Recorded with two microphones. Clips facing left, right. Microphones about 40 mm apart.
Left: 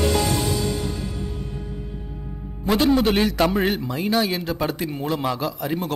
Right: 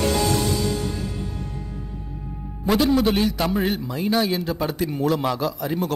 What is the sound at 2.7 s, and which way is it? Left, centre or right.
Speech, left.